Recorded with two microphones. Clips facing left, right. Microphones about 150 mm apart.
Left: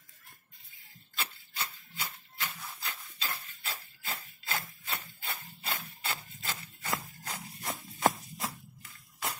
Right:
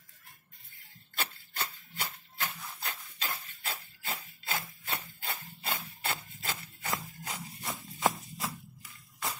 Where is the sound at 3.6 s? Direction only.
15° right (ahead or behind).